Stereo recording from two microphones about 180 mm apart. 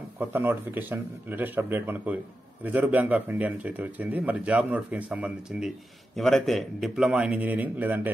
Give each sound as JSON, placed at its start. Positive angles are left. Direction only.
{"t": 0.2, "sound": "speech", "side_deg": -10}